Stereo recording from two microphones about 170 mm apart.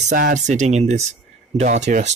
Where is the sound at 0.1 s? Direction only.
45° right (ahead or behind).